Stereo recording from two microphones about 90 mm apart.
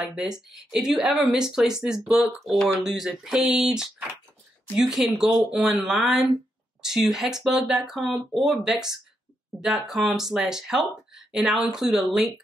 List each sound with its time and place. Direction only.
0.0 s speech: 5° right (ahead or behind)